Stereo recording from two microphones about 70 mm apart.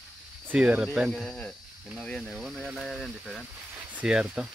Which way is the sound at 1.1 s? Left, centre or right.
Centre.